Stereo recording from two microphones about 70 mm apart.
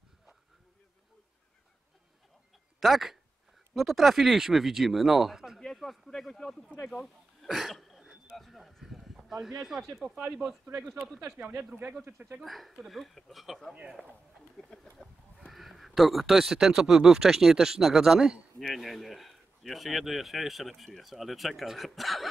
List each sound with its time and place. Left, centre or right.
2.8 s speech: centre
6.9 s throat clearing: centre
10.3 s speech: centre
11.5 s speech: right
12.4 s speech: centre
13.7 s speech: centre
14.6 s a sound: centre
15.3 s speech: centre